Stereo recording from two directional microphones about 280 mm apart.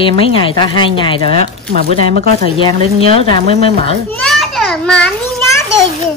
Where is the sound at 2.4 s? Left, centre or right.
Centre.